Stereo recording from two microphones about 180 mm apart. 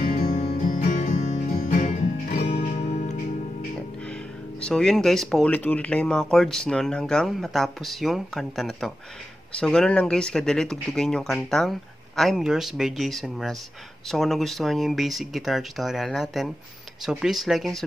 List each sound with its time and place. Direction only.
0.4 s music: 35° left (ahead or behind)
0.7 s music: 50° left (ahead or behind)
4.6 s speech: 5° left (ahead or behind)